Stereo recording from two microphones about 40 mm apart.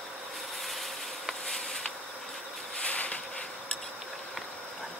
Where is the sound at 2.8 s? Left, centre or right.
Left.